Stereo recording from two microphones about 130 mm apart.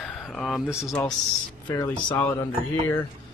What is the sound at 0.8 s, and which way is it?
Speech, 20° left (ahead or behind).